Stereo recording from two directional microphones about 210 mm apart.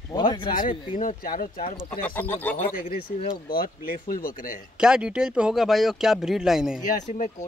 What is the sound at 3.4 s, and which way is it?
Speech, 45° left (ahead or behind).